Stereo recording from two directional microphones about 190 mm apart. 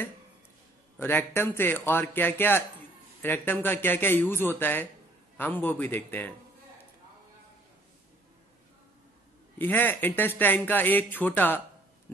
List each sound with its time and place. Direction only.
0.9 s speech: 10° left (ahead or behind)
9.6 s speech: 10° left (ahead or behind)